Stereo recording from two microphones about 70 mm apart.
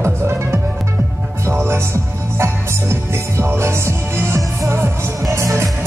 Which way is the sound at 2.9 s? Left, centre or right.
Right.